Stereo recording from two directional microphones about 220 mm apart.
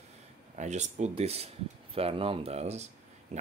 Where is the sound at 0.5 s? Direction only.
30° right (ahead or behind).